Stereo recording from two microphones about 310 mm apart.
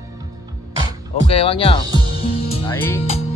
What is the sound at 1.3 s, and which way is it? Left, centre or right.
Speech, centre.